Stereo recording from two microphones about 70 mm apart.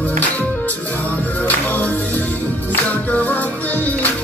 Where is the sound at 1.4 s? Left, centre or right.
Left.